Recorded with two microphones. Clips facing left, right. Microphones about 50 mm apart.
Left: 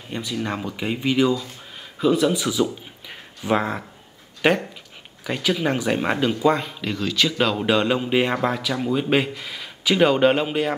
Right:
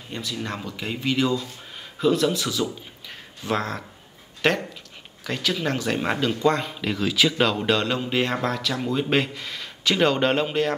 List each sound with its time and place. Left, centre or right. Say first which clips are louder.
0.1 s speech: left 4 dB; centre
6.7 s speech: right 1 dB; centre